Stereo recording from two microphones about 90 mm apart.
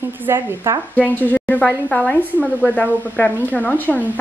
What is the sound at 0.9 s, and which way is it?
A woman's voice, 20° left (ahead or behind).